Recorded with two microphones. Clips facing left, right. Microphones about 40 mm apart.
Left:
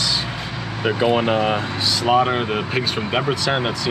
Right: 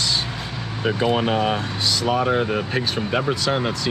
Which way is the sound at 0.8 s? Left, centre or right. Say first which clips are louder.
Left 2 dB; left.